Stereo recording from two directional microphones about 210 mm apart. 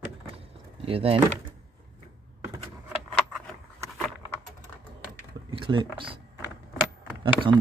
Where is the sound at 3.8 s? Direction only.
Centre (ahead or behind).